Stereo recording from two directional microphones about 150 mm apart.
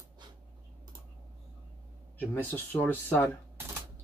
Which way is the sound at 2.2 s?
10° left (ahead or behind).